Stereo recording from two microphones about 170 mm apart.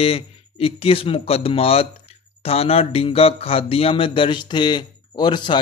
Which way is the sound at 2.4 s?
35° left (ahead or behind).